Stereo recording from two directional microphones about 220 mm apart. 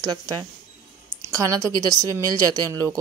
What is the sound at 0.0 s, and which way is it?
A woman's voice, 20° right (ahead or behind).